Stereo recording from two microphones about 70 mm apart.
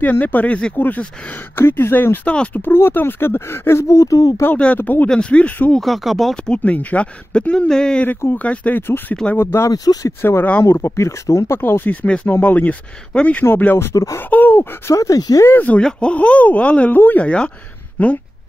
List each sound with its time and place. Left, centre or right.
0.0 s speech: left
2.2 s speech: centre
2.6 s speech: left
4.7 s speech: left
5.0 s speech: centre
5.8 s speech: centre
6.5 s speech: left
8.4 s speech: left
9.4 s speech: left
11.9 s speech: centre
13.9 s speech: left
14.3 s speech: left
14.9 s speech: left
15.4 s speech: left